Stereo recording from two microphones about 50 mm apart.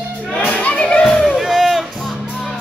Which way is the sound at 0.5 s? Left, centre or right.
Left.